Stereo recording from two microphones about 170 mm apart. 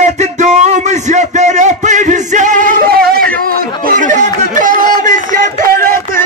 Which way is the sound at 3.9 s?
45° right (ahead or behind).